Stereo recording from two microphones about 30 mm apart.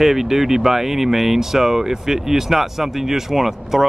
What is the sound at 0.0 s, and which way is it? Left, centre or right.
Speech, centre.